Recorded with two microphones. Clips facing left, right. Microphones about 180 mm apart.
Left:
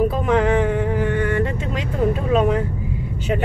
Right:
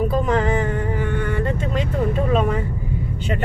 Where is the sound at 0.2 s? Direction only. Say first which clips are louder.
Left 2 dB; 5° left (ahead or behind).